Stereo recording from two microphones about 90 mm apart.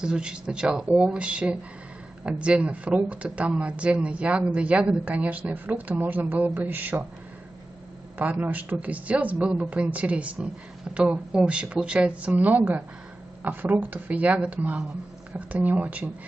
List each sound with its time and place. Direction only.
0.0 s speech: 10° right (ahead or behind)
8.2 s speech: 20° right (ahead or behind)